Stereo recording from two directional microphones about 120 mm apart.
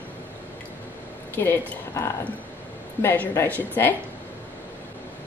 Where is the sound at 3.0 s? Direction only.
20° left (ahead or behind).